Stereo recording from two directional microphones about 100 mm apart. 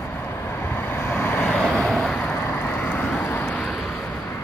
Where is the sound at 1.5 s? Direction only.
5° left (ahead or behind).